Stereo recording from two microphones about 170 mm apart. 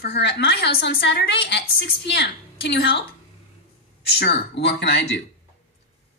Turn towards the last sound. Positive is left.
turn(degrees=85)